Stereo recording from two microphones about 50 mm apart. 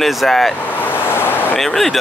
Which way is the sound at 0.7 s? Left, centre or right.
Left.